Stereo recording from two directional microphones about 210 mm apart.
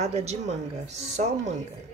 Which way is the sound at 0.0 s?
30° right (ahead or behind).